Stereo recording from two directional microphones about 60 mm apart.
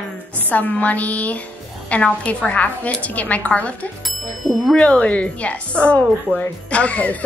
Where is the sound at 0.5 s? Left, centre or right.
Left.